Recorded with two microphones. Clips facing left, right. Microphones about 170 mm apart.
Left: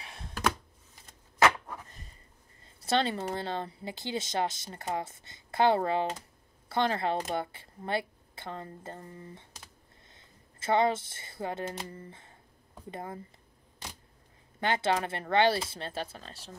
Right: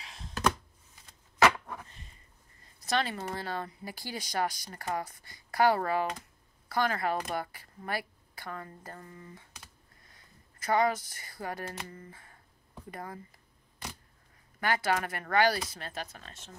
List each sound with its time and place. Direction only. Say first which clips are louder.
0.0 s a sound: left 2 dB; 60° left (ahead or behind)
2.6 s speech: left 3 dB; 30° left (ahead or behind)
14.6 s speech: left 1 dB; 25° left (ahead or behind)